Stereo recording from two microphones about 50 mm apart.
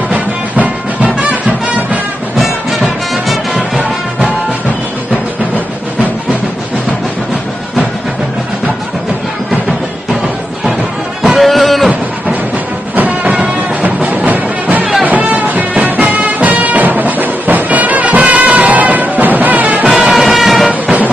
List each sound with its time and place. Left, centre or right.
0.1 s music: right
11.3 s a sound: centre
12.9 s music: right
20.0 s music: centre
20.8 s vehicle: right